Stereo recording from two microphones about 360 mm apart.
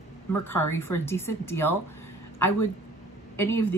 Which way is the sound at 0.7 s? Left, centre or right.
Centre.